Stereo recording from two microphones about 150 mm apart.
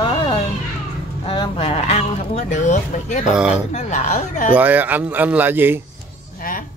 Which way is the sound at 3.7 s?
55° left (ahead or behind).